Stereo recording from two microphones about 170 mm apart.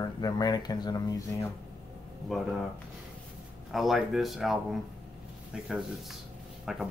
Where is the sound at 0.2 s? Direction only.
25° left (ahead or behind).